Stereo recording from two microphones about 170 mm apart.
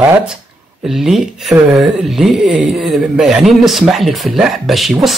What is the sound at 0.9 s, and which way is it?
Speech, centre (ahead or behind).